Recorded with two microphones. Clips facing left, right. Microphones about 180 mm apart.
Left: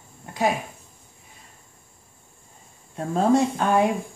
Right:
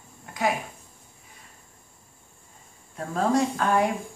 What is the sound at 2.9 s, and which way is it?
Speech, 25° left (ahead or behind).